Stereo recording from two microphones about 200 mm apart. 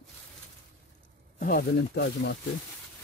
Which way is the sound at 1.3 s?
45° left (ahead or behind).